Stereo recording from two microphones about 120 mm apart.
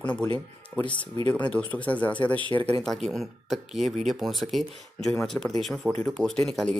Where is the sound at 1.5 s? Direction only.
10° left (ahead or behind).